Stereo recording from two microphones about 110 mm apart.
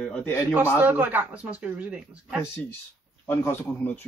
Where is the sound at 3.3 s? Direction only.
20° left (ahead or behind).